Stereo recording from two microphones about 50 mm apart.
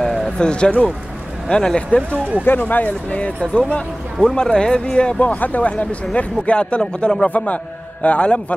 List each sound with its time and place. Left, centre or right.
0.0 s a sound: centre
1.5 s speech: centre
2.0 s speech: right
2.4 s speech: left; by 5.1 s centre
5.1 s speech: left; by 7.2 s centre
7.2 s a man's voice: left